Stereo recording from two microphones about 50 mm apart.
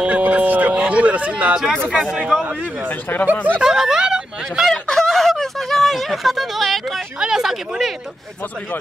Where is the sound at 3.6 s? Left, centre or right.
Centre.